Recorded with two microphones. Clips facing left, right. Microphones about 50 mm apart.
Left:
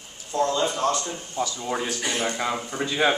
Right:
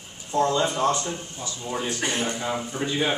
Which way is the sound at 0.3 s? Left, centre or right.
Centre.